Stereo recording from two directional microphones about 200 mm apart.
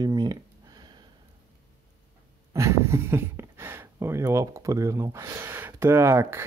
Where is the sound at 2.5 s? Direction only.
15° right (ahead or behind).